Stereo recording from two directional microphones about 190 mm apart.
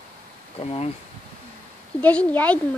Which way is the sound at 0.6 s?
35° left (ahead or behind).